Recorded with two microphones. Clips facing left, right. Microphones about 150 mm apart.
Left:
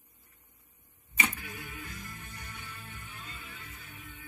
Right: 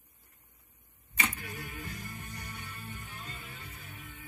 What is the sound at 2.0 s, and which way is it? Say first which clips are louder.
Music: right 3 dB; 10° right (ahead or behind).